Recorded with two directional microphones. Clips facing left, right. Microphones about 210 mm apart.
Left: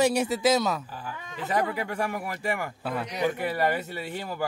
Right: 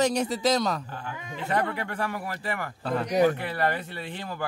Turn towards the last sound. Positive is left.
turn(degrees=10)  # may be behind; listen again after turning